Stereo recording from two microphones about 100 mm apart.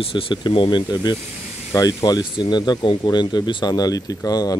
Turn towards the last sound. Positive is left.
turn(degrees=40)  # may be behind; listen again after turning